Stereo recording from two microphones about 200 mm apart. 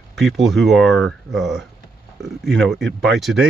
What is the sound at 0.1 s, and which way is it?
Speech, centre (ahead or behind).